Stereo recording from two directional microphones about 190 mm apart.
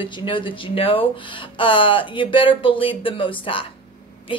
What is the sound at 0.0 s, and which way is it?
A woman's voice, 25° left (ahead or behind).